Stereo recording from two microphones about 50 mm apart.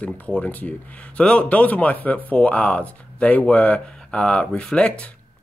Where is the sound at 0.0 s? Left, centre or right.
Left.